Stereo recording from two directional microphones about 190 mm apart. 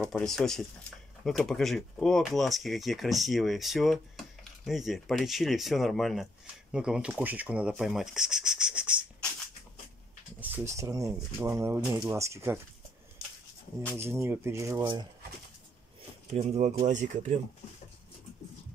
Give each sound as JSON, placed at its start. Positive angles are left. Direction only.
{"t": 0.0, "sound": "speech", "side_deg": 0}
{"t": 10.4, "sound": "speech", "side_deg": -10}
{"t": 13.9, "sound": "speech", "side_deg": -15}
{"t": 16.3, "sound": "speech", "side_deg": -35}